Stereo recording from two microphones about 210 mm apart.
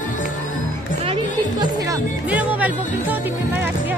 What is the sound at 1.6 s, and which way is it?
Music, 15° right (ahead or behind).